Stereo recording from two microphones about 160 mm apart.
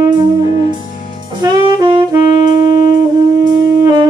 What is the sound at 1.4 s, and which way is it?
Saxophone, 25° right (ahead or behind).